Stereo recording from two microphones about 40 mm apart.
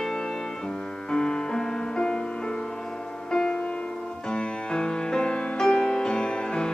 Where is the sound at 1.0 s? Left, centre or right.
Centre.